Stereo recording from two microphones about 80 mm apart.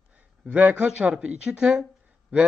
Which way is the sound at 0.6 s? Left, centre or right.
Centre.